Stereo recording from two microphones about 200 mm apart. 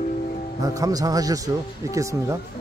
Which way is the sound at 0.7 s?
20° right (ahead or behind).